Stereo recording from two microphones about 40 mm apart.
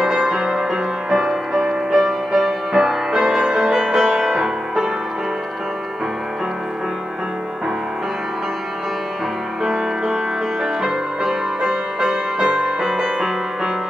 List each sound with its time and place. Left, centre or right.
0.1 s music: centre
10.6 s music: centre
12.8 s music: centre